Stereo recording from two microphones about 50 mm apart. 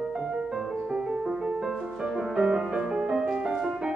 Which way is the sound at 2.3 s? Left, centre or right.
Centre.